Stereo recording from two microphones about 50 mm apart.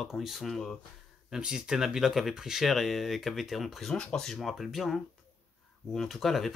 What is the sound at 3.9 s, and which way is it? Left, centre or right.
Speech, centre.